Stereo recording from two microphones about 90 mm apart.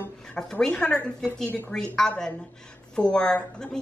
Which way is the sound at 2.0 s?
10° left (ahead or behind).